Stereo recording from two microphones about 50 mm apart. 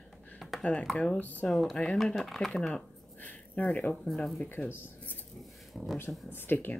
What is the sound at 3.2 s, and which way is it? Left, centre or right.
Speech, left.